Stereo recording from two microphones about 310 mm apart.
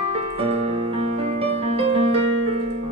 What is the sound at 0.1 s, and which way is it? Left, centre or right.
Music, centre.